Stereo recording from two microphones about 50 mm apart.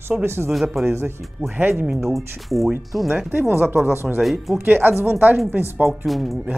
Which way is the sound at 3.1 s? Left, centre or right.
Right.